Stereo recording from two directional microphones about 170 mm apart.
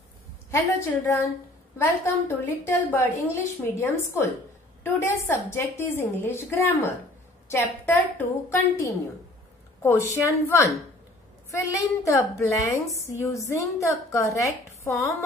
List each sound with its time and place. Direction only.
0.5 s a woman's voice: 15° left (ahead or behind)